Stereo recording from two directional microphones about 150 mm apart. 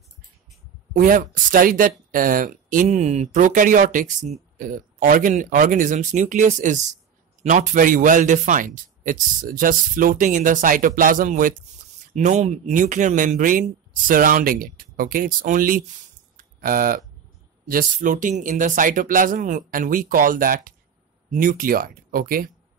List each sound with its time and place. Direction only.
0.9 s a man's voice: 65° right (ahead or behind)
16.3 s a sound: 70° right (ahead or behind)
17.6 s a man's voice: 65° right (ahead or behind)